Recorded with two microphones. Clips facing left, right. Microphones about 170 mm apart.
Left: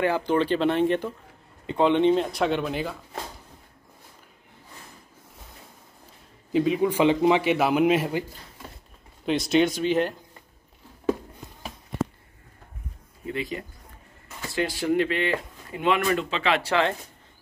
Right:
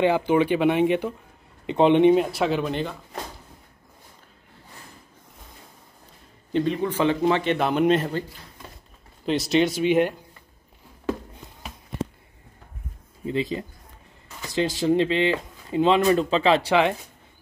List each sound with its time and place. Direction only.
0.3 s speech: 10° right (ahead or behind)
6.5 s speech: 5° left (ahead or behind)
9.2 s speech: centre (ahead or behind)
13.2 s speech: 25° right (ahead or behind)
16.6 s speech: 15° right (ahead or behind)